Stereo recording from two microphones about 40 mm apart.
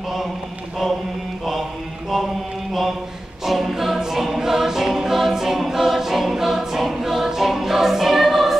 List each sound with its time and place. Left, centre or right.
1.4 s mantra: centre
3.4 s choir: centre